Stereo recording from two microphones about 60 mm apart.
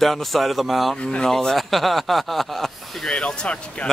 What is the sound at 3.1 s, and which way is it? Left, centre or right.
Speech, centre.